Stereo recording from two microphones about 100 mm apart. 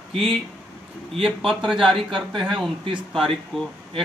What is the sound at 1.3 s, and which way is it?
A man's voice, centre (ahead or behind).